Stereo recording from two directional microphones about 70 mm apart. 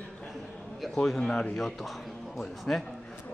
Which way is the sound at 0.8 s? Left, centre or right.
Centre.